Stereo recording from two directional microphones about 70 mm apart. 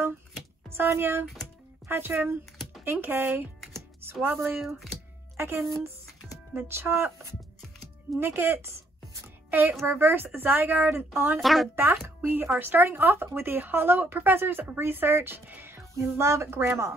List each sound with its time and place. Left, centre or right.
0.7 s speech: right
6.5 s speech: right
8.2 s speech: right
11.4 s speech: centre
11.7 s speech: right